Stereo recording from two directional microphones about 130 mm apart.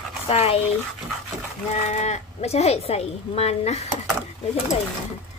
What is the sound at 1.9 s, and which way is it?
A woman's voice, 60° left (ahead or behind).